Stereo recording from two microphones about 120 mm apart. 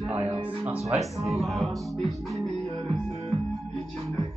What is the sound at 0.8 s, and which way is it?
Music, centre (ahead or behind).